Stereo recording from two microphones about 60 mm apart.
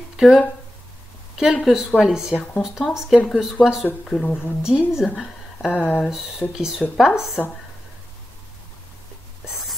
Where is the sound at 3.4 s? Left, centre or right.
Centre.